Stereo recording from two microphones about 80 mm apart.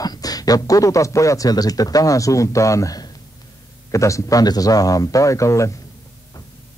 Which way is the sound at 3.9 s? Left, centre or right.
Left.